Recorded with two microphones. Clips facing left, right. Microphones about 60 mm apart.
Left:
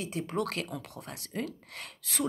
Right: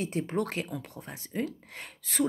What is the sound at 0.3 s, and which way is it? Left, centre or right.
Speech, right.